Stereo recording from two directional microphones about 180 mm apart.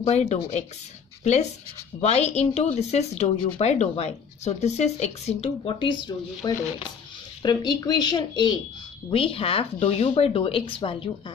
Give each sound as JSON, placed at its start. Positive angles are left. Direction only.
{"t": 0.0, "sound": "speech", "side_deg": 40}